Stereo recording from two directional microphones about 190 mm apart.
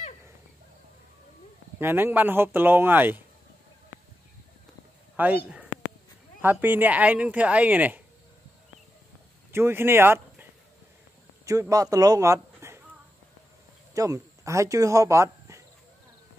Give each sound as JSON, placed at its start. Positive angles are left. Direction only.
{"t": 1.8, "sound": "speech", "side_deg": -10}
{"t": 5.1, "sound": "speech", "side_deg": -10}
{"t": 6.4, "sound": "speech", "side_deg": -10}
{"t": 9.5, "sound": "speech", "side_deg": -10}
{"t": 11.7, "sound": "speech", "side_deg": -20}
{"t": 13.9, "sound": "speech", "side_deg": -15}